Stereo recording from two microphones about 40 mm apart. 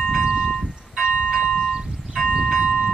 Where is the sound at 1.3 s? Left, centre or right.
Centre.